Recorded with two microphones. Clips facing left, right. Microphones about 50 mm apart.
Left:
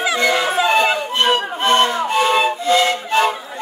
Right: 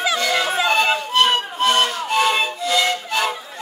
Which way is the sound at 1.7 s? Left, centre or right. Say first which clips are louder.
Left 5 dB; left.